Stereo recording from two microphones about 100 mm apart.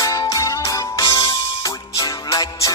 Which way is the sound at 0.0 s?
35° left (ahead or behind).